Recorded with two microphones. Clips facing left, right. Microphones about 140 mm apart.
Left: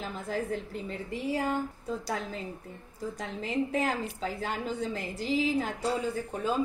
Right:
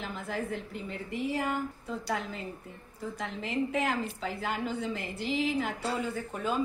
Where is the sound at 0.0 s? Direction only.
40° left (ahead or behind).